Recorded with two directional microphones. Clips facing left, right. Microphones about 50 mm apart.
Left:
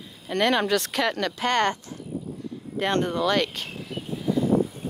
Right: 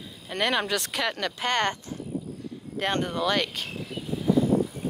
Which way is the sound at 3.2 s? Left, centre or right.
Centre.